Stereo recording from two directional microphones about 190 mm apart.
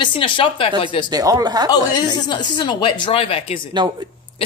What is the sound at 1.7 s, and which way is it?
Speech, 20° left (ahead or behind).